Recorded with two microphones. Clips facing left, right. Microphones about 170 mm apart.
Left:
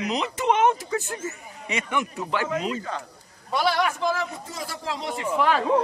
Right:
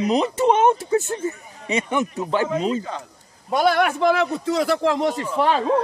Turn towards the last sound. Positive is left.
turn(degrees=-25)  # may be behind; listen again after turning